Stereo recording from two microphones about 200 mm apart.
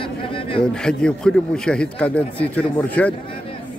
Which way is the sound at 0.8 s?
5° left (ahead or behind).